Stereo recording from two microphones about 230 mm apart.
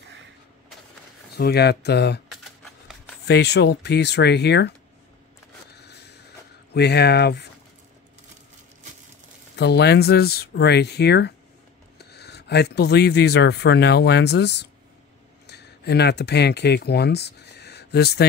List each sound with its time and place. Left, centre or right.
1.3 s speech: left
3.3 s speech: left
5.8 s a sound: left
6.7 s speech: left
9.6 s speech: left